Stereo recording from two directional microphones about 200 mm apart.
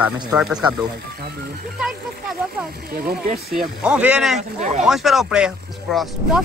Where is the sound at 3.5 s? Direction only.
5° right (ahead or behind).